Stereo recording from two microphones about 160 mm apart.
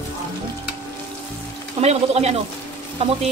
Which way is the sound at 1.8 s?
40° right (ahead or behind).